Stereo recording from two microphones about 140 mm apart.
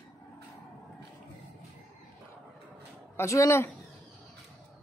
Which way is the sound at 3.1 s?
20° left (ahead or behind).